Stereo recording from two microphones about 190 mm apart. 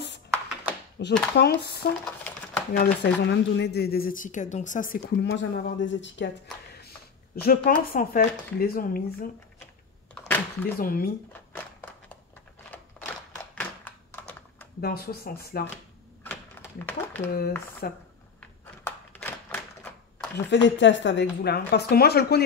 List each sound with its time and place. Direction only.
1.0 s a woman's voice: 60° left (ahead or behind)
7.3 s speech: 55° left (ahead or behind)
10.1 s a sound: 10° left (ahead or behind)
10.8 s speech: 50° left (ahead or behind)
13.0 s a sound: 5° left (ahead or behind)
13.6 s computer keyboard: 10° left (ahead or behind)
14.8 s speech: 50° left (ahead or behind)
16.3 s a sound: 10° left (ahead or behind)
17.8 s speech: 55° left (ahead or behind)
18.4 s typewriter: 10° left (ahead or behind)
20.3 s a woman's voice: 70° left (ahead or behind)